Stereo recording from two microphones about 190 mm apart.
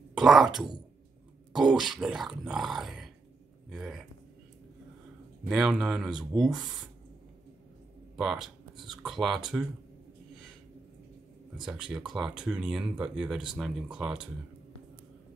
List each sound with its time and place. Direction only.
0.1 s speech: centre (ahead or behind)
5.5 s speech: centre (ahead or behind)
8.2 s speech: 5° right (ahead or behind)
11.6 s speech: 5° right (ahead or behind)